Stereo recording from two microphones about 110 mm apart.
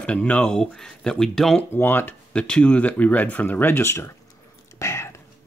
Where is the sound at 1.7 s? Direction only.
20° left (ahead or behind).